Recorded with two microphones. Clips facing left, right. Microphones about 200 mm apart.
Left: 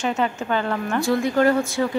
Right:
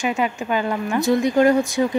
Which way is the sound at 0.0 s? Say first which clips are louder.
Right 1 dB; 10° right (ahead or behind).